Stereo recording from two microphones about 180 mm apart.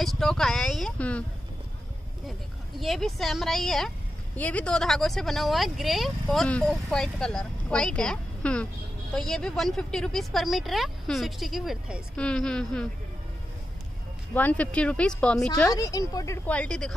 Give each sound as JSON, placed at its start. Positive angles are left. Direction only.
{"t": 0.0, "sound": "speech", "side_deg": 0}
{"t": 2.8, "sound": "speech", "side_deg": 0}
{"t": 14.3, "sound": "speech", "side_deg": 10}
{"t": 15.7, "sound": "a woman's voice", "side_deg": 20}
{"t": 16.4, "sound": "speech", "side_deg": 5}